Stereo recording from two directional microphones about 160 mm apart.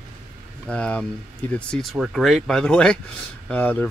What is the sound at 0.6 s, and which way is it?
Speech, 5° left (ahead or behind).